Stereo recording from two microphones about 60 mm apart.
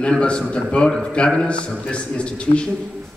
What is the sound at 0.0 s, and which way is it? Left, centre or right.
A man's voice, centre.